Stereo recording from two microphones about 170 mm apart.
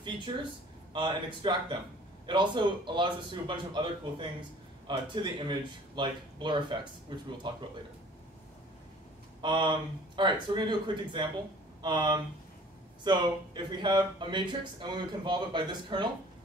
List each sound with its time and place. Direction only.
0.9 s speech: 25° right (ahead or behind)
9.4 s speech: 25° right (ahead or behind)